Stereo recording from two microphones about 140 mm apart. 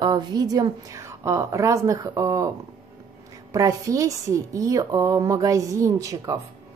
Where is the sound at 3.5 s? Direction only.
25° right (ahead or behind).